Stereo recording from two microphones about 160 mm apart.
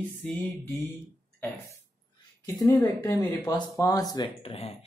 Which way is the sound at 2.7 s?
15° left (ahead or behind).